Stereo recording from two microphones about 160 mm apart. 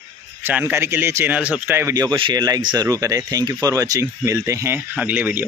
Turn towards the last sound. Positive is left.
turn(degrees=-10)  # may be behind; listen again after turning